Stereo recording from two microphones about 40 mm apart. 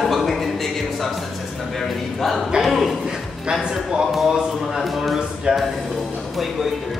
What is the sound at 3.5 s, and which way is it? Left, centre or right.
Speech, right.